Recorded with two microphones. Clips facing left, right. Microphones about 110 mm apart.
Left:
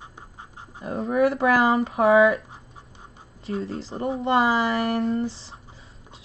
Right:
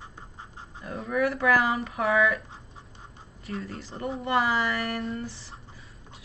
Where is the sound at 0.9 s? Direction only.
30° left (ahead or behind).